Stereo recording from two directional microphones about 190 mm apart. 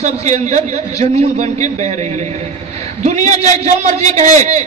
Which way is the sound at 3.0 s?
35° right (ahead or behind).